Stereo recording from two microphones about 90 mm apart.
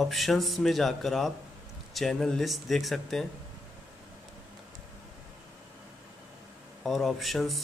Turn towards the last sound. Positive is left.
turn(degrees=0)  # may be behind; listen again after turning